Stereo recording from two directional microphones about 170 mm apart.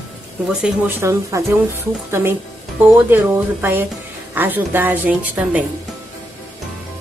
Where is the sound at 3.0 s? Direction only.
15° right (ahead or behind).